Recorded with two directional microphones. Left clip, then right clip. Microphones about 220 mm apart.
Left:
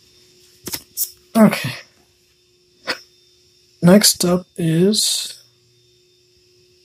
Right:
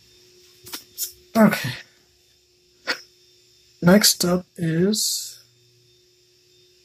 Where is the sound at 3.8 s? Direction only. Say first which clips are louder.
Left 3 dB; 10° left (ahead or behind).